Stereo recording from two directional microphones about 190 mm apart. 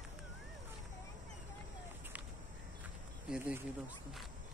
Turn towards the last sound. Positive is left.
turn(degrees=-10)  # may be behind; listen again after turning